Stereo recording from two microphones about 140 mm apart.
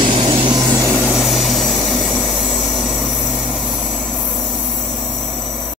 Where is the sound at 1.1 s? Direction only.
Centre (ahead or behind).